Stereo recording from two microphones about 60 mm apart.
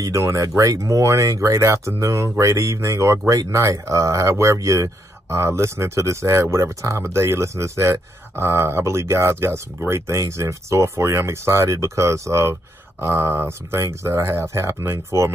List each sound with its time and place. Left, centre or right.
0.0 s speech: right
3.3 s speech: right
3.6 s speech: right
13.5 s speech: right